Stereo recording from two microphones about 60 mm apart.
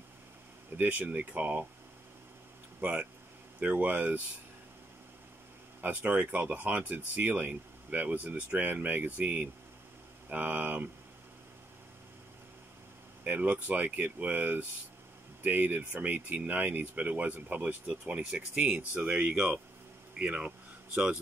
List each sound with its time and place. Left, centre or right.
0.7 s speech: right
2.8 s speech: right
5.8 s speech: right
13.2 s speech: right
18.2 s speech: centre
18.6 s speech: right